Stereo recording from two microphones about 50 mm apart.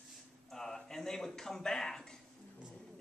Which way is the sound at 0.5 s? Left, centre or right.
Centre.